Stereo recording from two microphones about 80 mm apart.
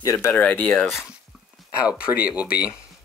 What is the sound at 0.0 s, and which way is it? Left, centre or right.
Speech, left.